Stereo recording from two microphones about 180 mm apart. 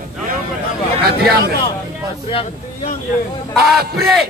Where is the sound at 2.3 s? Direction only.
30° left (ahead or behind).